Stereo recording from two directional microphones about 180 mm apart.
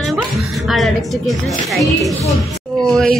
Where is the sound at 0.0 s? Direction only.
Centre (ahead or behind).